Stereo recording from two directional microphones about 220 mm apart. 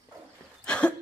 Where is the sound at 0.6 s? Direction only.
5° left (ahead or behind).